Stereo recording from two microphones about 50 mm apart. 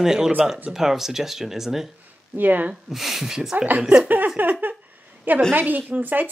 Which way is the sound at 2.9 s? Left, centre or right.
Centre.